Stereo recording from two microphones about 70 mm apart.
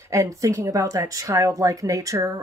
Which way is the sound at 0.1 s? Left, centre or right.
Right.